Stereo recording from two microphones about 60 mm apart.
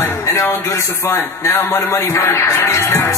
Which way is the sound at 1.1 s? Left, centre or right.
Left.